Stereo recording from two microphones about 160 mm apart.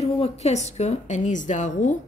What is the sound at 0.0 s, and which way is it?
A woman's voice, 40° left (ahead or behind).